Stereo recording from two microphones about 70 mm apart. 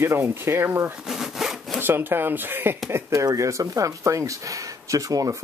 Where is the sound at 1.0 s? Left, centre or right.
Centre.